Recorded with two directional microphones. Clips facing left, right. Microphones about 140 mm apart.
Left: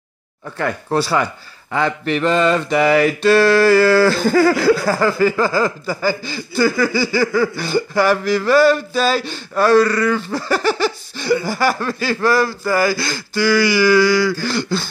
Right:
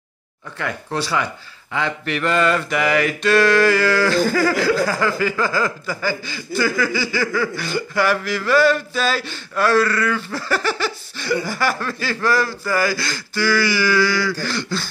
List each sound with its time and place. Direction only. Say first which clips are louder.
0.6 s a man's voice: left 6 dB; 40° left (ahead or behind)
2.1 s speech: left 3 dB; 25° left (ahead or behind)